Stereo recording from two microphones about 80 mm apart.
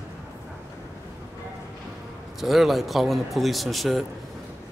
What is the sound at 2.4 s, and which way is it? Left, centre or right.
Speech, centre.